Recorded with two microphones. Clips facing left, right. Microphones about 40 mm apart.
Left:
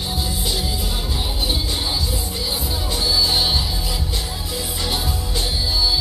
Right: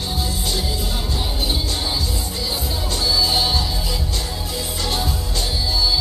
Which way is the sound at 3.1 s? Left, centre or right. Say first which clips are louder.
Even; centre.